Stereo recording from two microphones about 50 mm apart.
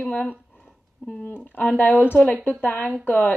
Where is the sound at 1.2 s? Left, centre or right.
Left.